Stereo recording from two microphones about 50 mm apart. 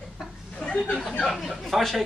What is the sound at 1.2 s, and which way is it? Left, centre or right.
Speech, centre.